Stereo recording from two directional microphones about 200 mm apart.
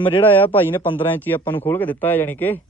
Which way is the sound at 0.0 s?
25° left (ahead or behind).